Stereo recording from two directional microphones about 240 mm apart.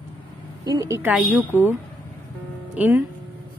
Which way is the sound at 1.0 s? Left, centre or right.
Centre.